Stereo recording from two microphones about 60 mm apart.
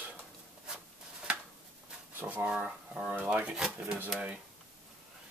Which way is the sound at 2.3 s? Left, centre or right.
Right.